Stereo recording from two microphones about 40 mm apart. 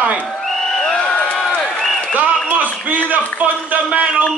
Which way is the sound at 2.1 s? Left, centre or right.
Right.